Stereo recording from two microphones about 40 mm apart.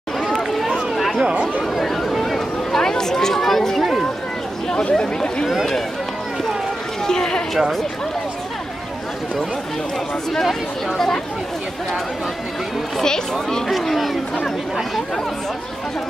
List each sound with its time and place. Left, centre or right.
0.2 s run: centre
1.2 s chatter: right
1.8 s a sound: centre
4.8 s speech: left
7.1 s speech: centre
7.5 s speech: centre
13.0 s speech: centre
13.7 s speech: centre